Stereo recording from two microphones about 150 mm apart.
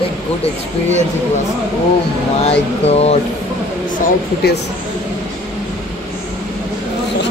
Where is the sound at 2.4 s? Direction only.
45° left (ahead or behind).